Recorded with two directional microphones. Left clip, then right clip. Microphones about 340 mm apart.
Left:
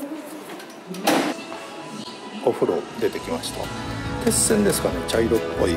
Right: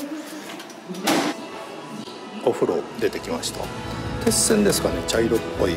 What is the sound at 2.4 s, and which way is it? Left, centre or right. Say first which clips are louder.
Speech: even; centre.